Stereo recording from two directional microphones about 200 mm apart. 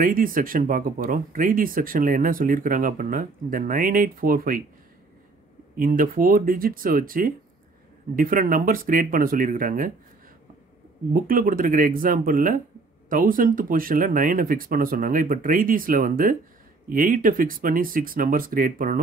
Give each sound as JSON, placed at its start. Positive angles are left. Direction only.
{"t": 0.0, "sound": "speech", "side_deg": -45}
{"t": 5.8, "sound": "speech", "side_deg": -45}
{"t": 11.1, "sound": "speech", "side_deg": -45}